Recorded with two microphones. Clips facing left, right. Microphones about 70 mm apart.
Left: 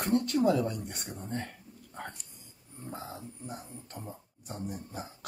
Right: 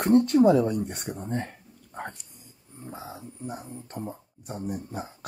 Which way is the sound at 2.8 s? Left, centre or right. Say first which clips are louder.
Right 2 dB; centre.